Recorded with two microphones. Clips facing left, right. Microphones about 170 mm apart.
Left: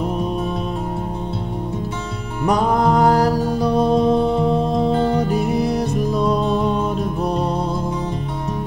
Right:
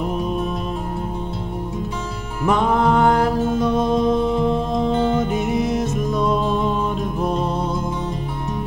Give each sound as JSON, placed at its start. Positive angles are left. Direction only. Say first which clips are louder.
{"t": 2.4, "sound": "music", "louder": "left 1 dB", "side_deg": 40}
{"t": 4.4, "sound": "music", "louder": "left 2 dB", "side_deg": 0}
{"t": 5.1, "sound": "music", "louder": "left 1 dB", "side_deg": 35}
{"t": 6.2, "sound": "music", "louder": "left 1 dB", "side_deg": 0}